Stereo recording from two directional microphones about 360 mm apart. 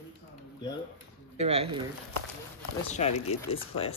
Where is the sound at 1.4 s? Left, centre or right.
Centre.